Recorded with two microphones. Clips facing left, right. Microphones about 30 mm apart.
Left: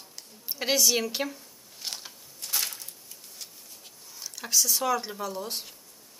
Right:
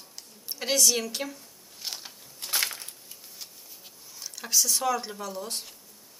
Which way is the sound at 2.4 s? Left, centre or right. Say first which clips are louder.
Right 3 dB; right.